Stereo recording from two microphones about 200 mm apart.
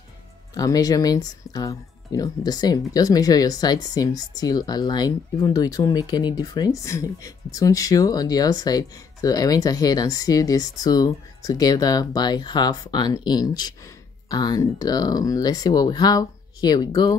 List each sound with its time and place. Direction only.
0.6 s speech: 20° left (ahead or behind)